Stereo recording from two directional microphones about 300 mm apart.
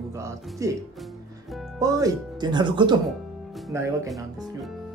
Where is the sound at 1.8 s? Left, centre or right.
Centre.